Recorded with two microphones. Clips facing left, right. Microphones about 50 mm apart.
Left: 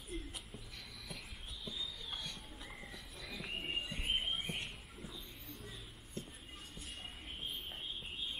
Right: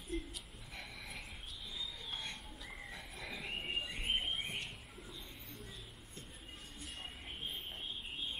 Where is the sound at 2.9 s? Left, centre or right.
Right.